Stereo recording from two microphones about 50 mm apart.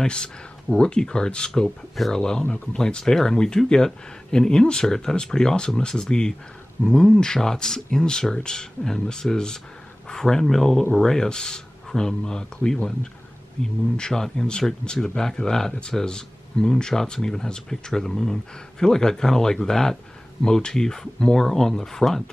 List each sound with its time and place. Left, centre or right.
0.0 s speech: centre